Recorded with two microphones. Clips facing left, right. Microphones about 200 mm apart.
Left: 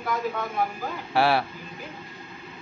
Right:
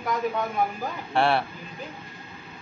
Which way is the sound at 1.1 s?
5° left (ahead or behind).